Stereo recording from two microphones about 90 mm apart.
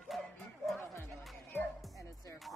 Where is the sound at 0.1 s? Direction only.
Centre (ahead or behind).